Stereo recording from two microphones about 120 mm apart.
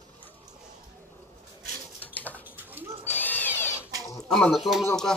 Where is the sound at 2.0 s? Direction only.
15° left (ahead or behind).